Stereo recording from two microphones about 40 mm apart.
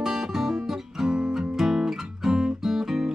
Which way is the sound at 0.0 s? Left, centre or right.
Centre.